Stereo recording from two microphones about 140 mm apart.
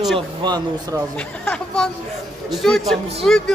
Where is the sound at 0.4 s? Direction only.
30° right (ahead or behind).